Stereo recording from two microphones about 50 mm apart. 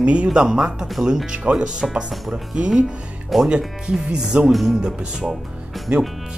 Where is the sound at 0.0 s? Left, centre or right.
Right.